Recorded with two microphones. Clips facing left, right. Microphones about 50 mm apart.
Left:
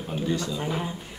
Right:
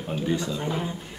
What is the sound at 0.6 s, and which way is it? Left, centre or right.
Speech, centre.